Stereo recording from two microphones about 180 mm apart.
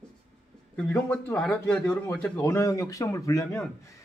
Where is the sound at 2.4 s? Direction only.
15° left (ahead or behind).